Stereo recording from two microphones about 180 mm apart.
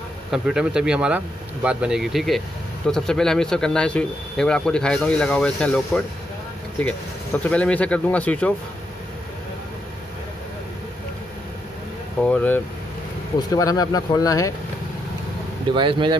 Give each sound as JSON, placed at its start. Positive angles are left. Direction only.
{"t": 0.3, "sound": "speech", "side_deg": -5}
{"t": 12.3, "sound": "speech", "side_deg": 10}
{"t": 15.7, "sound": "speech", "side_deg": -25}